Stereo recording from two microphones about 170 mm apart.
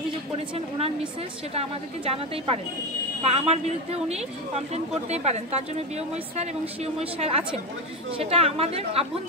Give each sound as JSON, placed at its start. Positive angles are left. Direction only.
{"t": 1.5, "sound": "a woman's voice", "side_deg": -35}